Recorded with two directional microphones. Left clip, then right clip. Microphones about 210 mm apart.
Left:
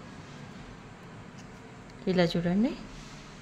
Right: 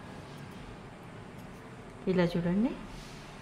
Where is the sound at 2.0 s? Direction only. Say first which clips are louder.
Left 3 dB; 30° left (ahead or behind).